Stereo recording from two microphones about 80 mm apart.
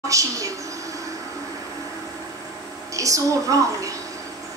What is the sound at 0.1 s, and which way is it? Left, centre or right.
Speech, right.